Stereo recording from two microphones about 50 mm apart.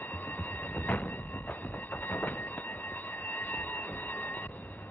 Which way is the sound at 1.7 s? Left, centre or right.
Left.